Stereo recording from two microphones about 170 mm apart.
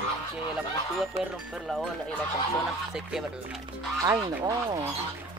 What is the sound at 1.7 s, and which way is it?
Speech, 5° left (ahead or behind).